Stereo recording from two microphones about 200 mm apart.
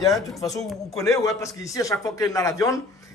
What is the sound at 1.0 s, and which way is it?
A man's voice, 15° left (ahead or behind).